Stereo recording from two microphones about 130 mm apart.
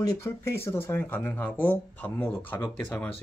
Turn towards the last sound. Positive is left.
turn(degrees=15)  # may be behind; listen again after turning